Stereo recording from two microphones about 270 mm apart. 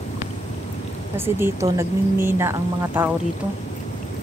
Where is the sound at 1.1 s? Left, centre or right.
Centre.